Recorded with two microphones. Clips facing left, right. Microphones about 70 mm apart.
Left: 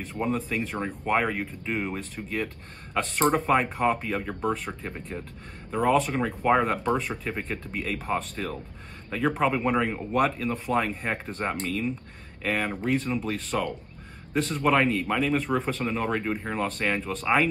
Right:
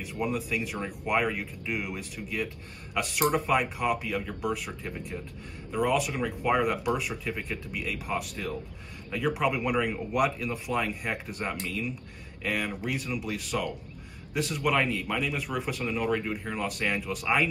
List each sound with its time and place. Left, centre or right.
0.0 s speech: left